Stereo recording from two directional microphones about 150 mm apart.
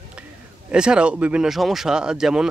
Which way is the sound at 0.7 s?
5° right (ahead or behind).